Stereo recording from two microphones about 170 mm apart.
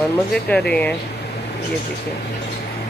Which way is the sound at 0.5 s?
5° left (ahead or behind).